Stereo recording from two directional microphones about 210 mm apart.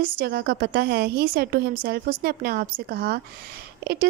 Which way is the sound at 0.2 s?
45° right (ahead or behind).